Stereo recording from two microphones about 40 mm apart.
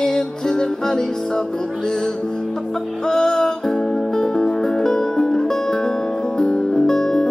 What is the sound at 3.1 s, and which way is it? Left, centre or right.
Music, centre.